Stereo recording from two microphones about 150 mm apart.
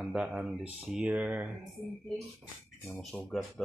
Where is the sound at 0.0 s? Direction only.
5° right (ahead or behind).